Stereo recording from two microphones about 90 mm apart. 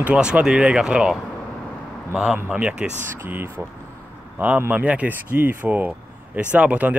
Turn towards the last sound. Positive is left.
turn(degrees=-15)  # may be behind; listen again after turning